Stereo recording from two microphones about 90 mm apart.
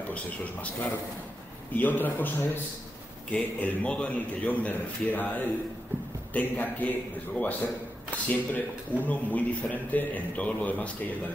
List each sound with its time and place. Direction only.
0.1 s a man's voice: 15° left (ahead or behind)